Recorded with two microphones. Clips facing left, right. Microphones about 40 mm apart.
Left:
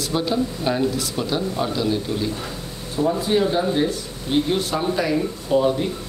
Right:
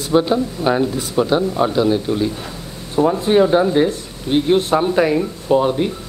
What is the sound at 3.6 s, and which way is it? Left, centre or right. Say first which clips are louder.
Speech: right 6 dB; right.